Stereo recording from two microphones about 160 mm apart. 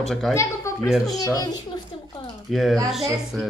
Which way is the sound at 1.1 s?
25° left (ahead or behind).